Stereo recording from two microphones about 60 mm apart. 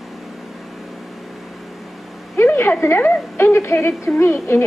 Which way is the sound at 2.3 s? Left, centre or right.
Left.